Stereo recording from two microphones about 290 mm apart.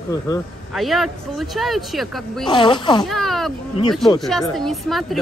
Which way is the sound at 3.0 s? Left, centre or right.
Centre.